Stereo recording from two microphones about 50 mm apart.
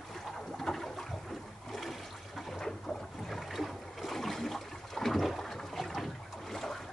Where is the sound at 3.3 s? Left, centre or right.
Centre.